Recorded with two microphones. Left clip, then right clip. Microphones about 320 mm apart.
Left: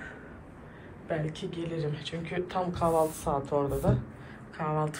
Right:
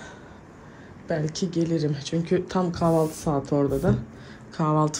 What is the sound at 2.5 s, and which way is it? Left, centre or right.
Speech, right.